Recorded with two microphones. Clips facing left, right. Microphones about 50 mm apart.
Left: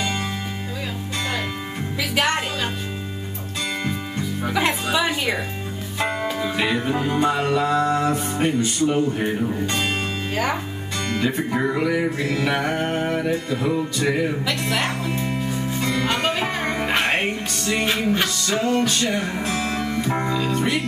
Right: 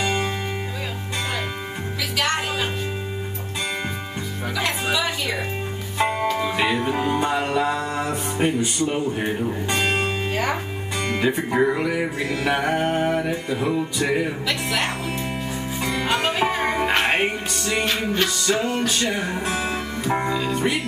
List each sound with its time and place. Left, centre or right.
0.0 s music: centre
2.1 s music: left
4.9 s music: left
6.3 s music: centre
10.3 s speech: centre
11.1 s music: centre